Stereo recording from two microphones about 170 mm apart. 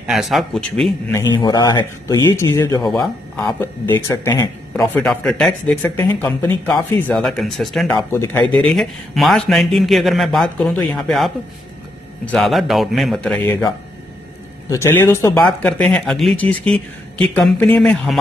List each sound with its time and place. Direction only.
0.0 s speech: centre (ahead or behind)
1.3 s speech: 25° left (ahead or behind)
2.8 s speech: centre (ahead or behind)
3.4 s speech: 15° left (ahead or behind)
4.7 s speech: 5° left (ahead or behind)
8.1 s speech: 15° left (ahead or behind)
8.6 s speech: centre (ahead or behind)
14.7 s speech: 15° left (ahead or behind)